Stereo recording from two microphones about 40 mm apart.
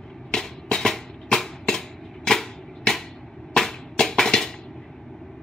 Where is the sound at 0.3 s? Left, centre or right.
Centre.